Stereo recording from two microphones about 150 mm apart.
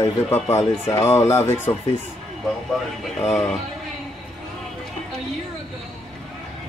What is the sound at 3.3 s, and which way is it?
Speech, 5° left (ahead or behind).